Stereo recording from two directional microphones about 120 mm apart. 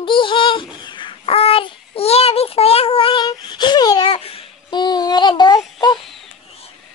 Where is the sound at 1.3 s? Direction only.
55° left (ahead or behind); by 4.1 s 35° left (ahead or behind).